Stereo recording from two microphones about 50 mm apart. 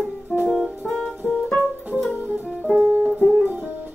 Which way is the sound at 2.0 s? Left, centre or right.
Right.